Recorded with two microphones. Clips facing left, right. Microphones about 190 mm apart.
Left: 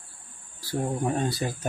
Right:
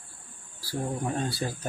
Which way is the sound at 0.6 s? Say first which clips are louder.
Left 3 dB; 20° left (ahead or behind).